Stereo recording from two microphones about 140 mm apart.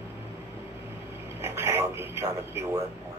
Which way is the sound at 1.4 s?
20° right (ahead or behind).